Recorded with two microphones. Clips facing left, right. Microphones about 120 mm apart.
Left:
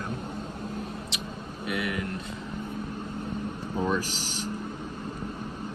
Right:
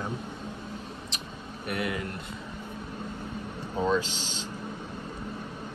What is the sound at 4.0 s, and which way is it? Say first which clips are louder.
Speech: left 1 dB; 20° right (ahead or behind).